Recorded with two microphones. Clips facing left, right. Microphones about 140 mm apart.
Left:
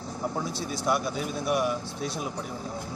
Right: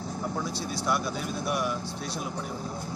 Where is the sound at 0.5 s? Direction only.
50° left (ahead or behind).